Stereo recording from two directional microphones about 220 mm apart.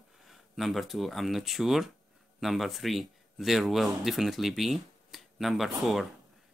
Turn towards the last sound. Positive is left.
turn(degrees=0)  # may be behind; listen again after turning